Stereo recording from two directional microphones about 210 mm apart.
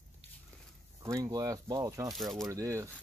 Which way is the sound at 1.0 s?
15° right (ahead or behind).